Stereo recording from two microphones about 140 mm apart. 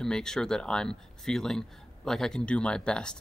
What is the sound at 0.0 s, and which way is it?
Speech, 5° left (ahead or behind).